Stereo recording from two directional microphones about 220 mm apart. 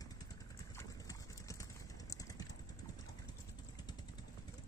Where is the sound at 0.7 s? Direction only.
15° left (ahead or behind).